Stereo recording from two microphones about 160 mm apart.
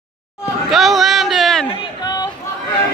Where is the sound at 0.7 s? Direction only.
Centre (ahead or behind).